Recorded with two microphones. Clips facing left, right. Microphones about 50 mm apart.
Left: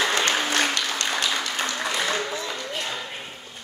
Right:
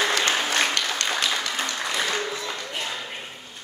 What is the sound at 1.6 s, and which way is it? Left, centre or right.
Applause, left.